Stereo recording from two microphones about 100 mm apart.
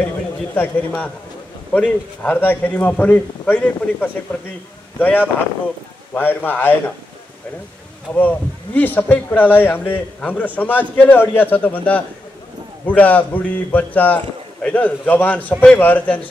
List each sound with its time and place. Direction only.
0.6 s a man's voice: 15° left (ahead or behind)
8.1 s speech: 15° left (ahead or behind)